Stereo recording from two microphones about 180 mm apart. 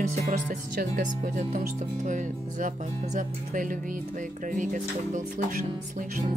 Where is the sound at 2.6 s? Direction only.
45° right (ahead or behind).